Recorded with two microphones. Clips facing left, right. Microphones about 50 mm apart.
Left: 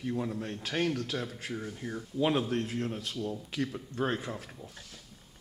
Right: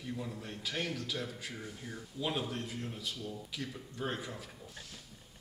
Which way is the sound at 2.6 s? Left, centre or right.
Left.